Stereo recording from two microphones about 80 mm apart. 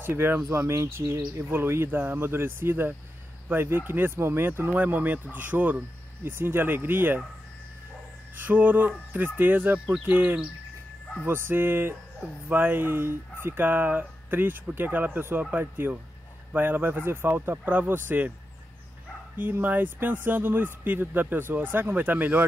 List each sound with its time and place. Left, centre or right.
0.0 s speech: right
8.4 s a sound: right
9.1 s speech: right
19.3 s speech: right